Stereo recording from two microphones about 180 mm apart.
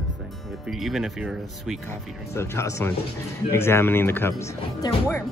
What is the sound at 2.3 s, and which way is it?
Speech, 15° left (ahead or behind).